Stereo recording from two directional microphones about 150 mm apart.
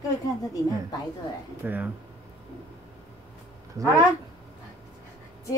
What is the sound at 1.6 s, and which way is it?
Speech, 10° right (ahead or behind).